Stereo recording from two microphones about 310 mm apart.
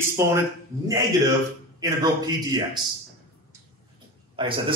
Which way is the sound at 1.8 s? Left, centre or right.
Centre.